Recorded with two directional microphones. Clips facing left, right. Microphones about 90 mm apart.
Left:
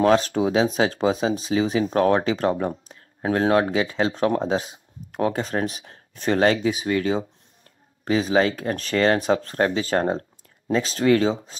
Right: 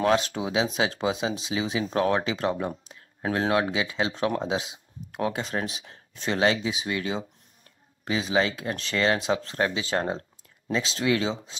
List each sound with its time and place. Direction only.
0.0 s speech: 35° left (ahead or behind)